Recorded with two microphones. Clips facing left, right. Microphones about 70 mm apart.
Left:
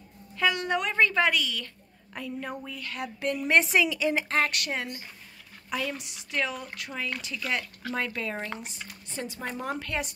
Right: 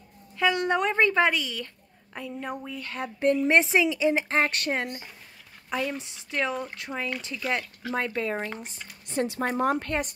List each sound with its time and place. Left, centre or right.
0.4 s speech: right
2.1 s speech: centre
9.2 s speech: right
9.6 s a woman's voice: right